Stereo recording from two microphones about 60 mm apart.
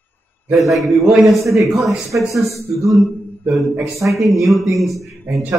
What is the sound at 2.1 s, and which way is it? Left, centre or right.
Speech, right.